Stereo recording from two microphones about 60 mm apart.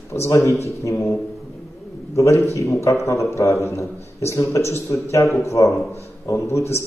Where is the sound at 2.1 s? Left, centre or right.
Left.